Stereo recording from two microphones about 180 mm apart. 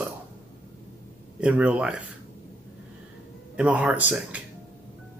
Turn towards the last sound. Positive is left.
turn(degrees=-10)  # may be behind; listen again after turning